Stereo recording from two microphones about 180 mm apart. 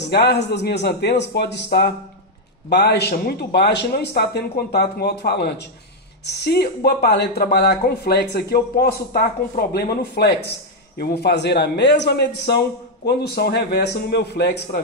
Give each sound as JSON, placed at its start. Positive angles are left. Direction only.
{"t": 0.0, "sound": "a man's voice", "side_deg": 65}